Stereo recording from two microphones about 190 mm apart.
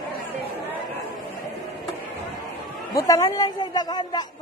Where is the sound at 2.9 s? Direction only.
15° left (ahead or behind).